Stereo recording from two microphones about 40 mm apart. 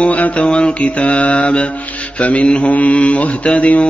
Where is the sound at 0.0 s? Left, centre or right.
Left.